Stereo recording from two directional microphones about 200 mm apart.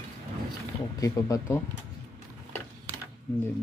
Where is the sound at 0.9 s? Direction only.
15° left (ahead or behind).